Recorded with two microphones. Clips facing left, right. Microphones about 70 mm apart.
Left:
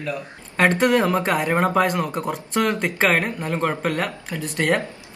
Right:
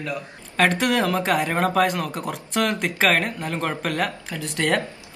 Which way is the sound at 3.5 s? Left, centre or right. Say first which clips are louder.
Left 3 dB; centre.